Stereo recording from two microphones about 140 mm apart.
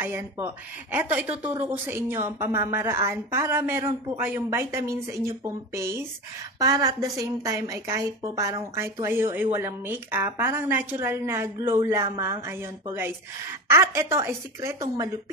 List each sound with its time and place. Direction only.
0.0 s a woman's voice: 15° right (ahead or behind)
13.7 s a woman's voice: 20° right (ahead or behind)